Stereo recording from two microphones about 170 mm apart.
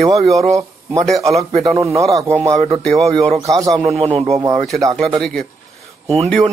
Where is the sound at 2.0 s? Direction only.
20° right (ahead or behind).